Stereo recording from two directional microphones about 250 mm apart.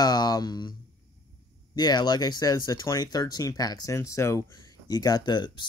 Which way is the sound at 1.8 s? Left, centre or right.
Centre.